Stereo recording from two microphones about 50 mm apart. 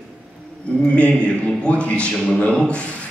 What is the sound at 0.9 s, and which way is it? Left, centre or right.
A man's voice, left.